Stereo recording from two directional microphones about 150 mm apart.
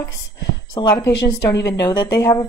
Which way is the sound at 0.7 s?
20° left (ahead or behind).